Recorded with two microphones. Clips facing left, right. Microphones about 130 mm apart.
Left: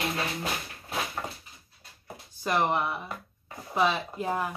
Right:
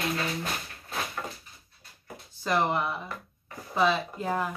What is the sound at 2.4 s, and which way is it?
Speech, 15° left (ahead or behind).